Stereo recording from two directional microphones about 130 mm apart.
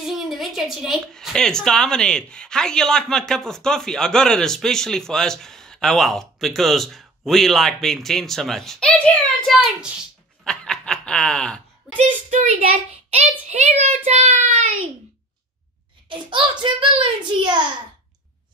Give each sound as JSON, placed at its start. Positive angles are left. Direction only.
{"t": 0.0, "sound": "speech", "side_deg": 0}
{"t": 9.5, "sound": "speech", "side_deg": -5}
{"t": 10.4, "sound": "snicker", "side_deg": 5}
{"t": 12.0, "sound": "a child's voice", "side_deg": -70}
{"t": 13.1, "sound": "a child's voice", "side_deg": -60}
{"t": 16.1, "sound": "a child's voice", "side_deg": -40}